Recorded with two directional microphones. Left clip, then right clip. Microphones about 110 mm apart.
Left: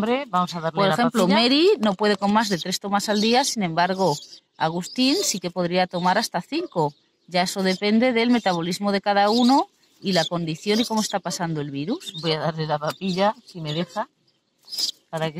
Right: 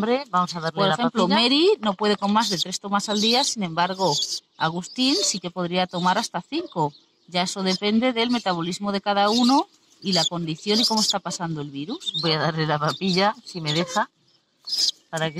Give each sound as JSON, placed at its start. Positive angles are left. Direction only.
{"t": 0.0, "sound": "speech", "side_deg": 10}
{"t": 4.0, "sound": "speech", "side_deg": -25}
{"t": 4.6, "sound": "speech", "side_deg": 25}
{"t": 12.3, "sound": "speech", "side_deg": 5}
{"t": 14.7, "sound": "speech", "side_deg": -25}
{"t": 15.0, "sound": "speech", "side_deg": 10}